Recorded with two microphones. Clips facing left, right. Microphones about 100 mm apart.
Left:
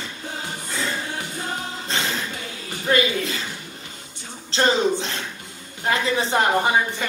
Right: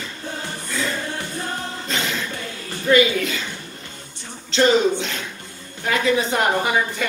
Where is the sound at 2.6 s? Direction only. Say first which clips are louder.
Right 4 dB; 20° left (ahead or behind).